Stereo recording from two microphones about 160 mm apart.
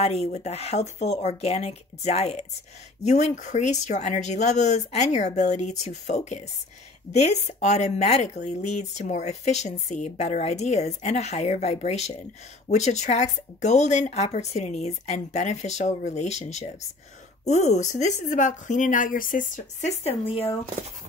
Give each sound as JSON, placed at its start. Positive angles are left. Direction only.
{"t": 0.0, "sound": "speech", "side_deg": 40}